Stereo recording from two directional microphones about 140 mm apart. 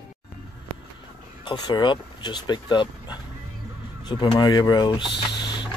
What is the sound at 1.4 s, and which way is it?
Speech, 35° left (ahead or behind).